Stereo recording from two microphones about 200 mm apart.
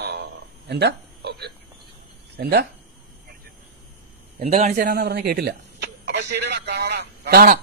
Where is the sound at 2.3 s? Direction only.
55° right (ahead or behind).